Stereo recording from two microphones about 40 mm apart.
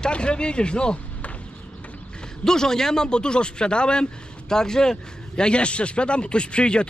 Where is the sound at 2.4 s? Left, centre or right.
Centre.